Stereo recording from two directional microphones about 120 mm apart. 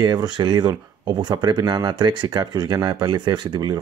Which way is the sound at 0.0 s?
35° right (ahead or behind).